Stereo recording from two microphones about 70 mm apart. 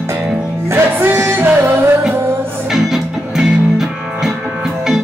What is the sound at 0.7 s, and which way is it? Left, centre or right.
Music, right.